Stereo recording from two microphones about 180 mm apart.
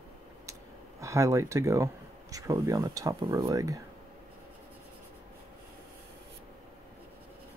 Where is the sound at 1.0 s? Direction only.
15° right (ahead or behind).